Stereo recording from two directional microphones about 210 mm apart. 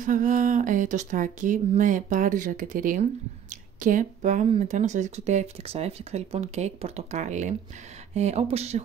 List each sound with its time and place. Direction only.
0.0 s speech: 40° right (ahead or behind)